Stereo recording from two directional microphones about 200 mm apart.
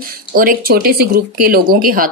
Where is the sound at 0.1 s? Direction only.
45° right (ahead or behind).